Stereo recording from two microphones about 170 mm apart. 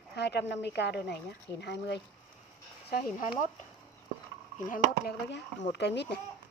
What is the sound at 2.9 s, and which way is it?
Speech, 60° left (ahead or behind).